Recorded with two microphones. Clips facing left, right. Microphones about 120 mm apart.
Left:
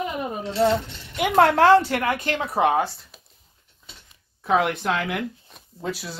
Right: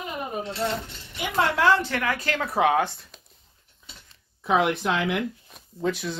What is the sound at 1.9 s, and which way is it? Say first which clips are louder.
Speech: left 3 dB; 30° left (ahead or behind).